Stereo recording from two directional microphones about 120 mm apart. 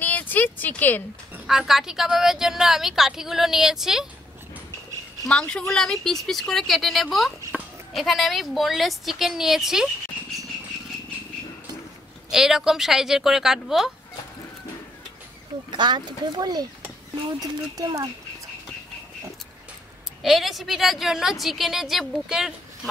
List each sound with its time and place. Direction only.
0.0 s a sound: 15° left (ahead or behind)
1.5 s a woman's voice: 5° right (ahead or behind)
5.3 s a woman's voice: 5° left (ahead or behind)
12.3 s a woman's voice: 5° right (ahead or behind)
15.7 s speech: 35° right (ahead or behind)
20.2 s a woman's voice: centre (ahead or behind)